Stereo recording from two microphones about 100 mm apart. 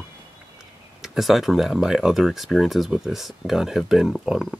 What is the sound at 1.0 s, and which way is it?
Speech, centre (ahead or behind).